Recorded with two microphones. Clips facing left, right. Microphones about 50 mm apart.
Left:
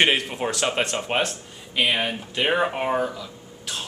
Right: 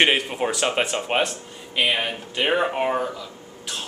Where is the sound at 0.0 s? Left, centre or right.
Centre.